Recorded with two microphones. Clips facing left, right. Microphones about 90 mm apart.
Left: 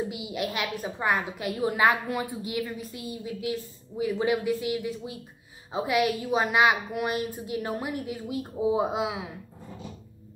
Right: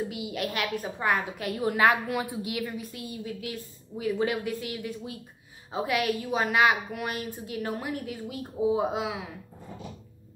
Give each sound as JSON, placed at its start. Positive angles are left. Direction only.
{"t": 0.1, "sound": "a woman's voice", "side_deg": 10}
{"t": 3.1, "sound": "a woman's voice", "side_deg": 10}
{"t": 5.9, "sound": "a woman's voice", "side_deg": 10}